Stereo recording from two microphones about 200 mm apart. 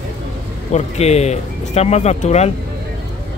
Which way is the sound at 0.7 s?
35° left (ahead or behind).